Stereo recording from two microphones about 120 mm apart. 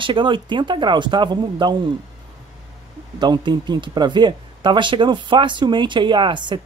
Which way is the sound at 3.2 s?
35° right (ahead or behind).